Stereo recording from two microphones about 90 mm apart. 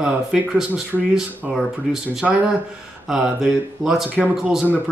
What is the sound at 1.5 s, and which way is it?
Speech, 5° right (ahead or behind).